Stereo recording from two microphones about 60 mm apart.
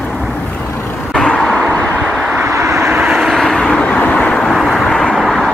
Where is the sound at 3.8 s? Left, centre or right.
Left.